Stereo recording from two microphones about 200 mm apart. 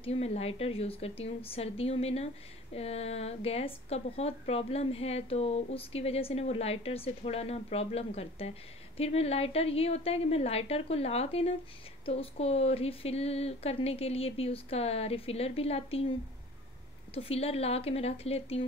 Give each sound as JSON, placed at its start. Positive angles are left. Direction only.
{"t": 0.0, "sound": "a woman's voice", "side_deg": 30}
{"t": 17.1, "sound": "a woman's voice", "side_deg": 30}